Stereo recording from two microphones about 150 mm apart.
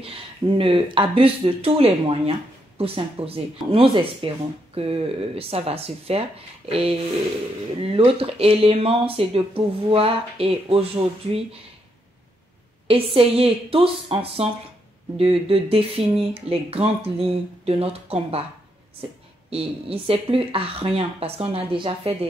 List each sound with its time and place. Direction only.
0.0 s speech: 35° right (ahead or behind)
12.8 s speech: 40° right (ahead or behind)
19.5 s speech: 40° right (ahead or behind)